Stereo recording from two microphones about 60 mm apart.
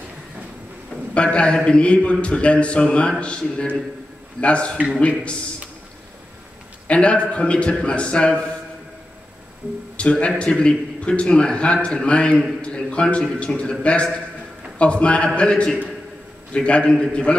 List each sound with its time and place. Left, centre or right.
1.1 s a man's voice: centre
6.9 s a man's voice: centre
9.9 s a man's voice: centre
12.6 s a sound: centre
13.6 s a man's voice: centre